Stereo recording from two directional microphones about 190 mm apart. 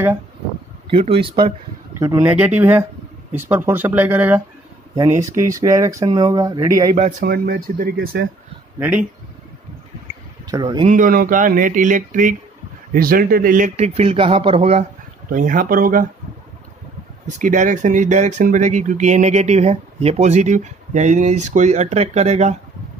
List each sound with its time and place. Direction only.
0.8 s speech: 30° right (ahead or behind)
2.0 s speech: 10° right (ahead or behind)
5.4 s speech: 20° right (ahead or behind)
7.0 s speech: 40° right (ahead or behind)
7.2 s speech: 55° right (ahead or behind)
8.7 s speech: 10° right (ahead or behind)
10.4 s speech: 20° right (ahead or behind)
10.9 s speech: 45° right (ahead or behind)
15.2 s speech: 45° right (ahead or behind)
17.4 s speech: 45° right (ahead or behind)